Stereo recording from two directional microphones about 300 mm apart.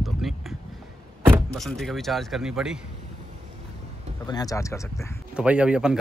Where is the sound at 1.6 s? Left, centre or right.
Centre.